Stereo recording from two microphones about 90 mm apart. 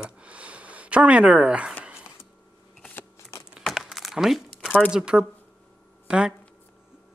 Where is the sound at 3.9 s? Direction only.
Centre (ahead or behind).